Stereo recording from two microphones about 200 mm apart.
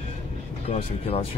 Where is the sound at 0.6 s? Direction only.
30° left (ahead or behind).